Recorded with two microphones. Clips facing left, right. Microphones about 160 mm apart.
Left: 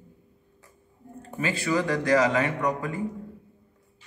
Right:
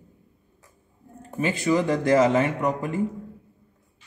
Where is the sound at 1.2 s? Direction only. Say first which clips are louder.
Right 3 dB; 20° right (ahead or behind).